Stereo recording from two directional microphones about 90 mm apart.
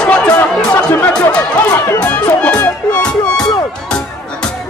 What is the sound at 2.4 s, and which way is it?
Music, 10° left (ahead or behind).